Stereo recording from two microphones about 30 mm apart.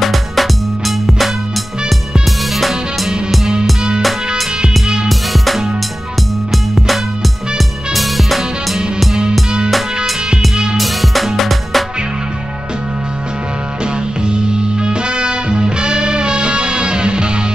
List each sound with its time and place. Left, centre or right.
0.0 s music: centre
5.0 s music: centre
10.5 s music: right
10.8 s music: centre
14.2 s music: right